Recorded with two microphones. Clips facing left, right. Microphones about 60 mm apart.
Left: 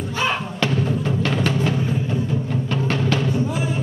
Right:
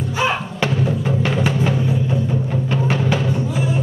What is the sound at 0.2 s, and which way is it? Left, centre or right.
Music, centre.